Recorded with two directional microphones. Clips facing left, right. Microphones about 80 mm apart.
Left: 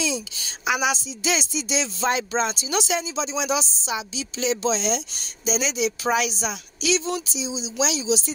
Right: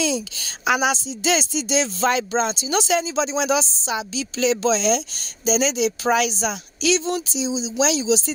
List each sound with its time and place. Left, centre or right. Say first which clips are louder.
0.0 s speech: right 4 dB; right
2.4 s speech: right 3 dB; right